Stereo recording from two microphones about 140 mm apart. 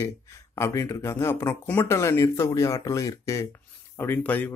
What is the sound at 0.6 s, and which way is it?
Speech, 20° left (ahead or behind).